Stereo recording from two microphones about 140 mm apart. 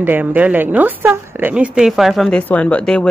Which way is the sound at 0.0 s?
15° right (ahead or behind).